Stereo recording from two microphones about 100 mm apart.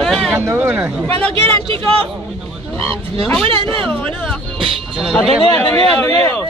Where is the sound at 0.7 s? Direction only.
15° right (ahead or behind).